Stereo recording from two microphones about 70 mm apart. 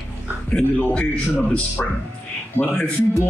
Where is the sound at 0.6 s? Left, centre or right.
Left.